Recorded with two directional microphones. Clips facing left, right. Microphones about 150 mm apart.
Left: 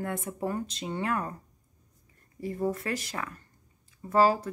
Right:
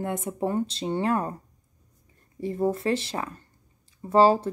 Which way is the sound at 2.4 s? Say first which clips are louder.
Right 5 dB; 25° right (ahead or behind).